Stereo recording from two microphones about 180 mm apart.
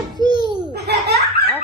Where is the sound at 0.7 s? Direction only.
65° right (ahead or behind).